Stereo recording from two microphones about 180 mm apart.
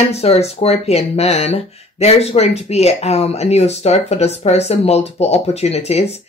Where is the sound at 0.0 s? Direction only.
35° left (ahead or behind).